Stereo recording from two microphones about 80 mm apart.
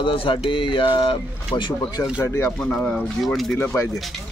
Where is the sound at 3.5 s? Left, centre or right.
Left.